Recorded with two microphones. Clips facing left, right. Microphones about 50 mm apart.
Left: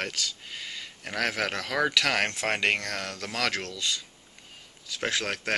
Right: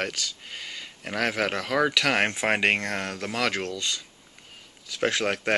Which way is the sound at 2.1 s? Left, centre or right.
Right.